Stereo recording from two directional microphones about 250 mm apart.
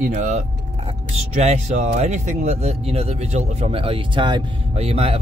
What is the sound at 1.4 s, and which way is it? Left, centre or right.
Speech, right.